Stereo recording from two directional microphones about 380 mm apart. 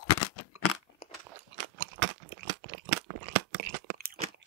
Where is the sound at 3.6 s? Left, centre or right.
Right.